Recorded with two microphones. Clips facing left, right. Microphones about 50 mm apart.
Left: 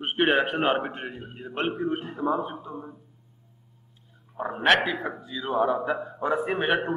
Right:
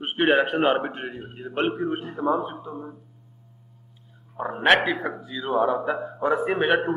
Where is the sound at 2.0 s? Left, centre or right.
Right.